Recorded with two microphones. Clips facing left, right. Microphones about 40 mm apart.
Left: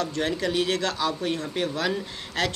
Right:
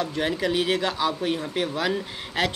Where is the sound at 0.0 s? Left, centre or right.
Centre.